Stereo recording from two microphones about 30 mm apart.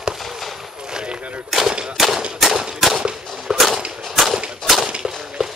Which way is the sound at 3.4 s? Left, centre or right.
Centre.